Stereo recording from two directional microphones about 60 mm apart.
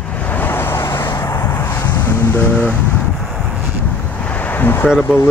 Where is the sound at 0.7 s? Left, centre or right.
Left.